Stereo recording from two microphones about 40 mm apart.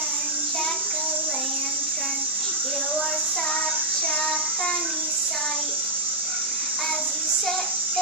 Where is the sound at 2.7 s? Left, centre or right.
Left.